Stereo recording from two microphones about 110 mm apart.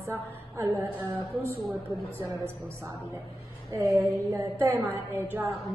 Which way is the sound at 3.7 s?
30° right (ahead or behind).